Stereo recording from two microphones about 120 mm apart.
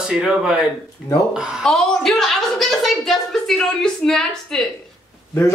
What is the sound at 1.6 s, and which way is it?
A woman's voice, 5° left (ahead or behind).